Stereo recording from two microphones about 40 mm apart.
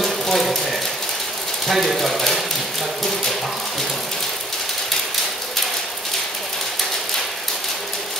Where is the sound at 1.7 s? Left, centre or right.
Centre.